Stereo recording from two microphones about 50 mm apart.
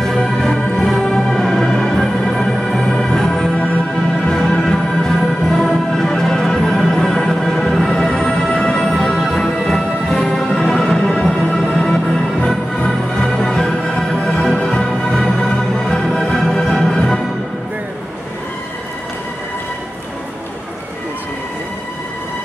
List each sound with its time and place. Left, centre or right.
0.0 s music: centre
1.4 s music: centre
16.2 s music: centre